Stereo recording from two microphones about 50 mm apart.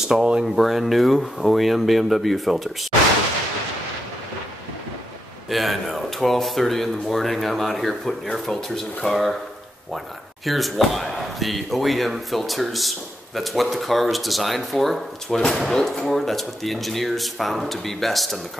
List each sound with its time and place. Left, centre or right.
0.1 s speech: centre
0.6 s speech: centre
5.5 s speech: centre
10.4 s speech: centre